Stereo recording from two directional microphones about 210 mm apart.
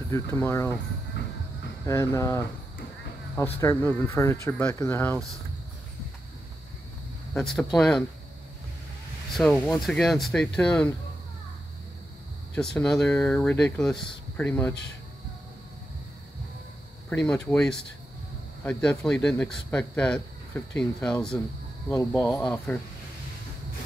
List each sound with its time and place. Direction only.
0.1 s speech: 10° left (ahead or behind)
1.9 s speech: 15° left (ahead or behind)
3.5 s speech: 10° left (ahead or behind)
7.3 s a man's voice: centre (ahead or behind)
9.4 s a man's voice: centre (ahead or behind)
12.7 s a man's voice: 5° left (ahead or behind)
17.1 s a man's voice: 5° left (ahead or behind)